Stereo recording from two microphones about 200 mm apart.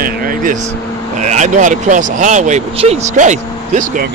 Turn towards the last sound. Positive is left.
turn(degrees=-40)  # may be behind; listen again after turning